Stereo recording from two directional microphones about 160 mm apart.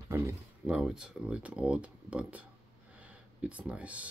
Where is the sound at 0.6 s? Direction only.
5° right (ahead or behind).